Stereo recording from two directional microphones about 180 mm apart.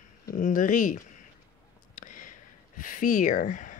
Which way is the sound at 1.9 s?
45° left (ahead or behind).